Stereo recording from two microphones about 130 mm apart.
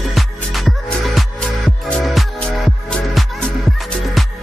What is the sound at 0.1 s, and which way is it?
Music, centre (ahead or behind).